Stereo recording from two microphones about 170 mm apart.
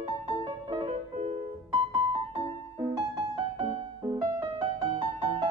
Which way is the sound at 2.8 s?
30° right (ahead or behind).